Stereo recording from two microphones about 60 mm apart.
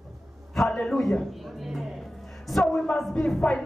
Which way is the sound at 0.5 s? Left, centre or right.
Centre.